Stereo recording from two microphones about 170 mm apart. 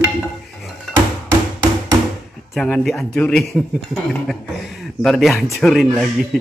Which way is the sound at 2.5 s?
Centre (ahead or behind).